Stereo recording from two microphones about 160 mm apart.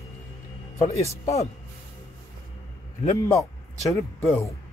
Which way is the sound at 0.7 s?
40° left (ahead or behind).